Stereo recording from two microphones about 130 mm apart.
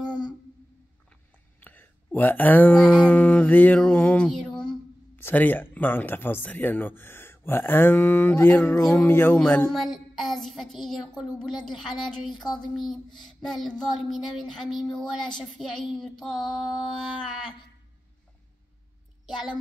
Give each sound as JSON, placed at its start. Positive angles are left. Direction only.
{"t": 1.6, "sound": "speech", "side_deg": 15}
{"t": 9.7, "sound": "child singing", "side_deg": 0}